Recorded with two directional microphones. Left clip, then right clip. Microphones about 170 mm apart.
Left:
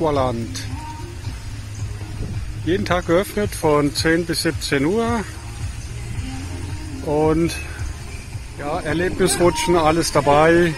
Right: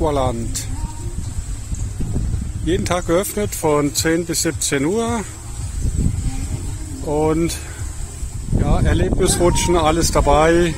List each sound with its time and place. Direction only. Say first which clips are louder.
0.0 s speech: even; 15° right (ahead or behind)
2.6 s speech: even; 20° right (ahead or behind)
7.1 s speech: even; centre (ahead or behind)
8.6 s speech: even; 10° right (ahead or behind)